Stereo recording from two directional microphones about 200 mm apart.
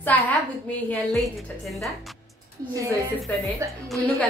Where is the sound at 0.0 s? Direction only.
10° left (ahead or behind).